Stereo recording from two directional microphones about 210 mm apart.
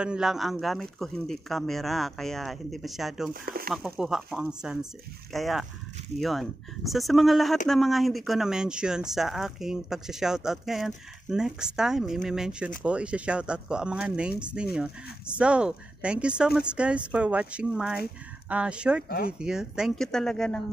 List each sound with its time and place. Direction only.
0.0 s speech: 5° right (ahead or behind)
3.4 s speech: 45° right (ahead or behind)
3.7 s speech: 5° right (ahead or behind)